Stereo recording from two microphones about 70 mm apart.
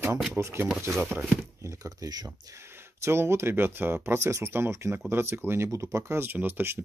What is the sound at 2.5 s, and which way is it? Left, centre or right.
Speech, right.